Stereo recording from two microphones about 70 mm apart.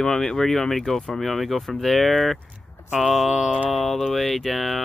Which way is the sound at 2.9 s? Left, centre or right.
Centre.